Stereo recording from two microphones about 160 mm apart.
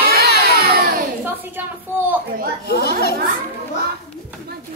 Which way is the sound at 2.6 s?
80° left.